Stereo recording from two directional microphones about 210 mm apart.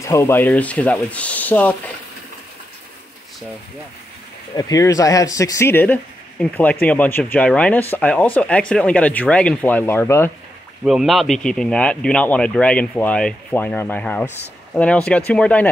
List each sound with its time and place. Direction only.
0.0 s speech: 15° left (ahead or behind)
4.6 s speech: 15° left (ahead or behind)
10.9 s a man's voice: centre (ahead or behind)